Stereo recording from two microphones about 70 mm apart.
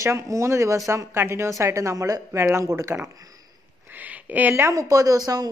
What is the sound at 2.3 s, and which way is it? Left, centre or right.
Speech, right.